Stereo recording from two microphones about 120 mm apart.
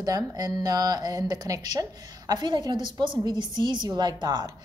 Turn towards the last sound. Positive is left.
turn(degrees=-35)  # may be behind; listen again after turning